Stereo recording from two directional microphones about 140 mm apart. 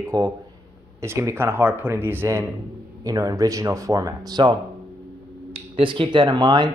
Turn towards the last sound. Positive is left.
turn(degrees=-35)  # may be behind; listen again after turning